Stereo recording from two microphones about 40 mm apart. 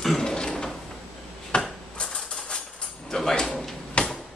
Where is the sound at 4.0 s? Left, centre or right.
Left.